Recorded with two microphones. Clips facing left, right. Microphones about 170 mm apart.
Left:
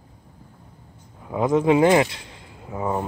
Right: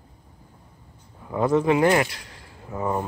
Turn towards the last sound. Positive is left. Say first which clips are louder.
# left 1 dB
turn(degrees=10)  # may be behind; listen again after turning